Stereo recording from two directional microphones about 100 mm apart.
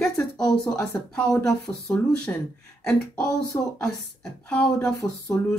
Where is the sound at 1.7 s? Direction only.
20° left (ahead or behind).